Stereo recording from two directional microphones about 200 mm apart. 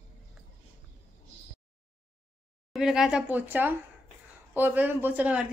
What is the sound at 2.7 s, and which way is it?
A woman's voice, centre (ahead or behind).